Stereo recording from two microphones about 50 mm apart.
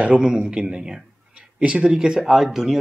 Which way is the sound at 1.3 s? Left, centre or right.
Right.